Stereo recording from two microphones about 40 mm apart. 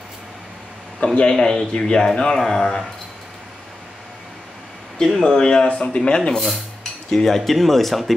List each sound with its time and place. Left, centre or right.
1.0 s speech: left
4.9 s speech: centre
6.3 s dishes: centre
6.8 s speech: centre